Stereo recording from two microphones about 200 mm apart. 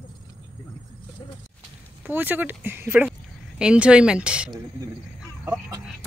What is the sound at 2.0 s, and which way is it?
Speech, 10° right (ahead or behind).